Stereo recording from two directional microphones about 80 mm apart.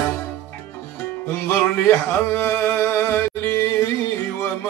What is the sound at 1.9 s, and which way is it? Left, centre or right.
Speech, left.